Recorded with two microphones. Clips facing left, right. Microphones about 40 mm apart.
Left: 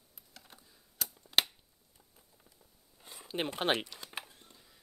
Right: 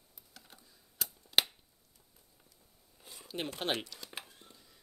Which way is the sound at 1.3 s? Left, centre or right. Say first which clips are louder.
Even; centre.